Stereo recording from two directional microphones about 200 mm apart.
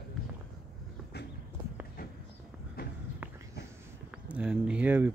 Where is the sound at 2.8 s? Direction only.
45° left (ahead or behind).